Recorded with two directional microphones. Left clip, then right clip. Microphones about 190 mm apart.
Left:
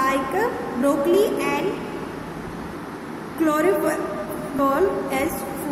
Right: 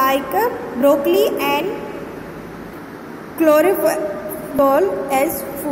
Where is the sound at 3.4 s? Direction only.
20° right (ahead or behind).